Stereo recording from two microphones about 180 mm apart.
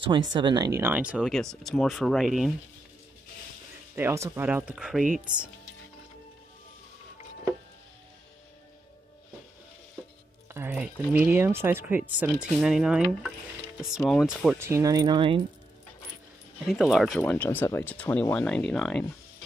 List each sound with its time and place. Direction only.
0.3 s speech: 25° right (ahead or behind); by 2.5 s centre (ahead or behind)
3.9 s speech: 15° right (ahead or behind)
10.5 s speech: 10° right (ahead or behind)
14.6 s speech: 15° right (ahead or behind)
16.6 s speech: centre (ahead or behind)